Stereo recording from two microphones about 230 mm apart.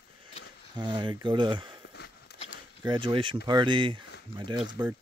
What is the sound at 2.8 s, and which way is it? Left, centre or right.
Speech, right.